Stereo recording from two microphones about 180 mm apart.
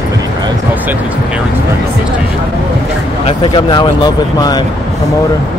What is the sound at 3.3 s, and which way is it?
Speech, 25° left (ahead or behind).